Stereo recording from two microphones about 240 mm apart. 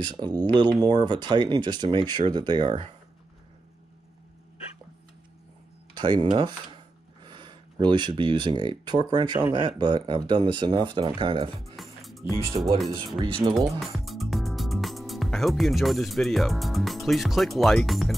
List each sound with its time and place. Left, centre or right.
0.0 s speech: centre
5.9 s speech: centre
11.7 s music: centre
12.6 s speech: right
13.3 s speech: centre